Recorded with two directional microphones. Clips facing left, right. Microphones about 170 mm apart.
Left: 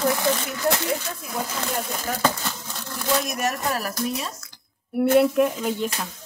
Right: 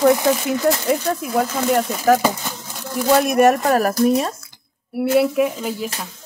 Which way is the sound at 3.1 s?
60° right (ahead or behind).